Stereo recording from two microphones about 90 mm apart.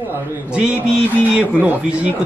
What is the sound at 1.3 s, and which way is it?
Speech, 15° right (ahead or behind).